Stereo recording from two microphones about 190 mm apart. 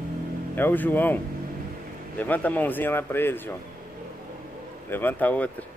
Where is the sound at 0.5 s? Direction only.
10° left (ahead or behind).